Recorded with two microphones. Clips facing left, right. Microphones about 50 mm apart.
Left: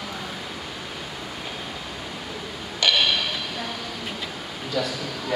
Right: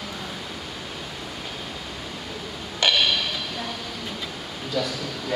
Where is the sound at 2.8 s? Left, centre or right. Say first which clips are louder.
Even; right.